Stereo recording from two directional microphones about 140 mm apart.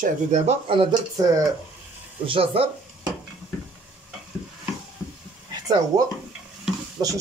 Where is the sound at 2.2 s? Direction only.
40° right (ahead or behind).